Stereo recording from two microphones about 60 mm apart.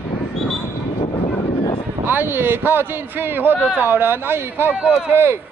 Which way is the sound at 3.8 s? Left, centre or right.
Right.